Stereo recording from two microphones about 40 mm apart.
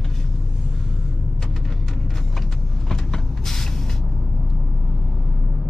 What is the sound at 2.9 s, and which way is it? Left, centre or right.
Vehicle, centre.